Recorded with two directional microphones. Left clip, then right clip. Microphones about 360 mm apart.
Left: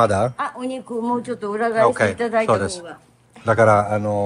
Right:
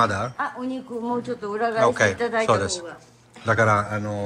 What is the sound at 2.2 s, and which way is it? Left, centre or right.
Speech, left.